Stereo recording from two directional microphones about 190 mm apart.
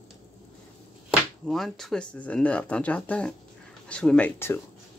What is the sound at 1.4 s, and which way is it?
Speech, centre (ahead or behind).